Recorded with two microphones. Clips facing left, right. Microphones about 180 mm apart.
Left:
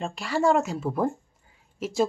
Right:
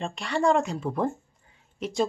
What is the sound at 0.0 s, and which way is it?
Speech, 5° left (ahead or behind).